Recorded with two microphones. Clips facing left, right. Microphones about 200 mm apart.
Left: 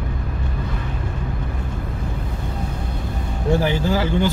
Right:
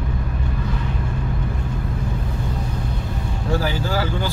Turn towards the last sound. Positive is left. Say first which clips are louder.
# left 4 dB
turn(degrees=20)  # may be behind; listen again after turning